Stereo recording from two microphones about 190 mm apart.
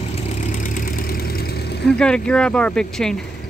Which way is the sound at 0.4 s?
40° left (ahead or behind).